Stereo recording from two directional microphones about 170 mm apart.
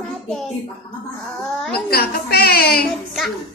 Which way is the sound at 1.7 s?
65° left (ahead or behind).